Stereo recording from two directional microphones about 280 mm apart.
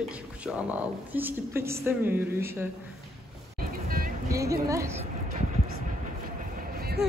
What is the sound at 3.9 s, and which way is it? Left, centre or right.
Music, right.